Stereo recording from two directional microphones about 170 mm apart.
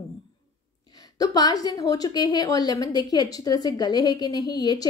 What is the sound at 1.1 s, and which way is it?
A woman's voice, 20° left (ahead or behind).